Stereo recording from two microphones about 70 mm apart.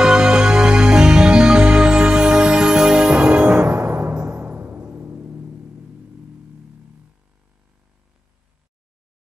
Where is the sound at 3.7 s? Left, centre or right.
Right.